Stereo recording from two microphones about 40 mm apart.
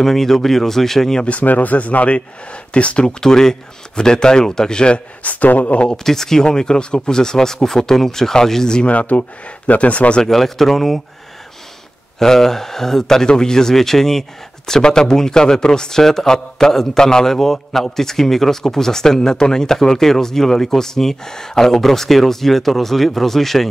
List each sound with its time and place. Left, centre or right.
0.0 s a man's voice: centre
1.4 s speech: left
5.2 s speech: left
6.0 s a man's voice: centre
8.8 s speech: left
10.2 s a man's voice: centre
12.2 s a man's voice: centre